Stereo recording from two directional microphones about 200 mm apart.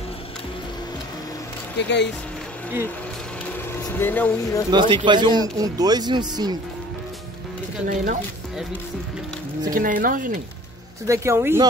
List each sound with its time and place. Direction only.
1.8 s speech: 60° left (ahead or behind)
3.8 s speech: 10° left (ahead or behind)
4.6 s speech: 20° right (ahead or behind)
7.9 s speech: 40° right (ahead or behind)
9.7 s speech: 45° right (ahead or behind)
11.1 s speech: 15° right (ahead or behind)